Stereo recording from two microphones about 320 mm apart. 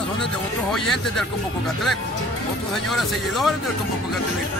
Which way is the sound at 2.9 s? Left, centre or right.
Centre.